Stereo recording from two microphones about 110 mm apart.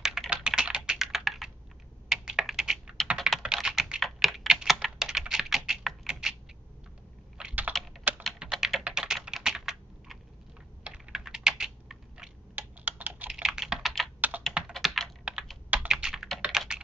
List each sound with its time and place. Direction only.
0.0 s computer keyboard: 5° right (ahead or behind)
7.3 s computer keyboard: 10° right (ahead or behind)
8.2 s typing: centre (ahead or behind)
10.8 s computer keyboard: 5° right (ahead or behind)
12.5 s computer keyboard: 15° right (ahead or behind)
13.3 s computer keyboard: 5° right (ahead or behind)